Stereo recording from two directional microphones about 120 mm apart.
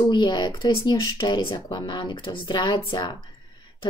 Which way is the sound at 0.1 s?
40° left (ahead or behind).